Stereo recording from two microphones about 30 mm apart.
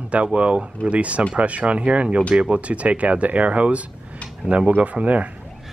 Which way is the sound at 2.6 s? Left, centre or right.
Right.